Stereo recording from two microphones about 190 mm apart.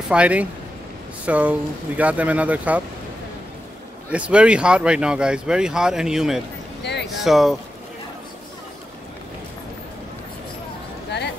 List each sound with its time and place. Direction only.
0.1 s speech: 5° right (ahead or behind)
4.1 s speech: 5° right (ahead or behind)
6.8 s a sound: 60° left (ahead or behind)
7.2 s speech: centre (ahead or behind)